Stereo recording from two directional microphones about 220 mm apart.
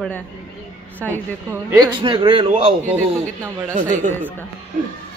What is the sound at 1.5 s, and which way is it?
Speech, 10° right (ahead or behind).